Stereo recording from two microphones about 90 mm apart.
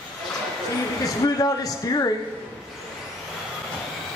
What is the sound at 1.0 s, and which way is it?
A man's voice, 40° left (ahead or behind).